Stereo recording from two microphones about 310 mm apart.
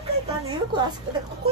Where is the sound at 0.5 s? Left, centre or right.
Centre.